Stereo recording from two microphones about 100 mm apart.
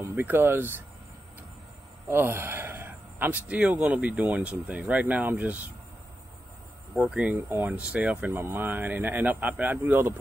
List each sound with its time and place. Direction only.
0.1 s speech: 20° right (ahead or behind)
2.0 s speech: 25° right (ahead or behind)
7.1 s speech: 10° right (ahead or behind)
8.3 s speech: 25° right (ahead or behind)